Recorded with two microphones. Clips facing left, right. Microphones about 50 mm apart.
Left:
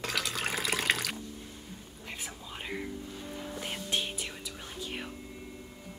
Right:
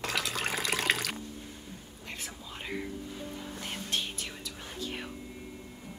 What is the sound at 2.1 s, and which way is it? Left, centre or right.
Music, centre.